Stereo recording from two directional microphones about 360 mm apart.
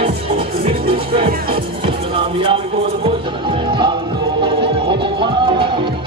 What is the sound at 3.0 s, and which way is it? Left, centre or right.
Music, centre.